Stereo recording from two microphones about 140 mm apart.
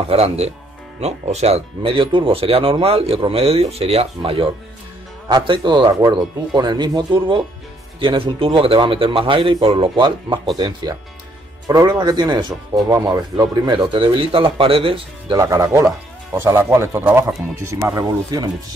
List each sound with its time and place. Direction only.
0.1 s a man's voice: 45° right (ahead or behind)
15.3 s a man's voice: 25° right (ahead or behind)